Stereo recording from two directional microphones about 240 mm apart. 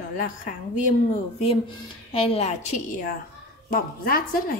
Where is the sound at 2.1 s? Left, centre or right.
Left.